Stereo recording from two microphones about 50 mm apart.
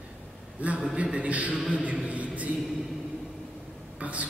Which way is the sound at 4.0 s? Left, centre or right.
Right.